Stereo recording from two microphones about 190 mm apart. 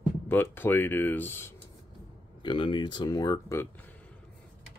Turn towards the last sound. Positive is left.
turn(degrees=15)  # may be behind; listen again after turning